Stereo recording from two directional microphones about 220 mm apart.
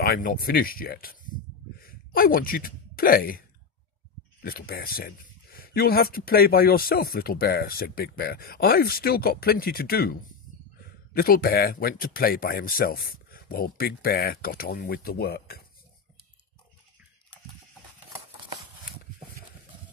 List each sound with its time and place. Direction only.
0.0 s speech: 40° left (ahead or behind)
11.1 s speech: 40° left (ahead or behind)